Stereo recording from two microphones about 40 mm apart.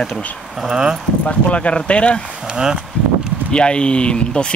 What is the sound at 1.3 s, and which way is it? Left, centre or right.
Speech, left.